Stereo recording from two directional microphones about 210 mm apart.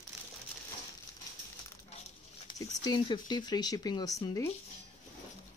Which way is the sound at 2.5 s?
15° left (ahead or behind).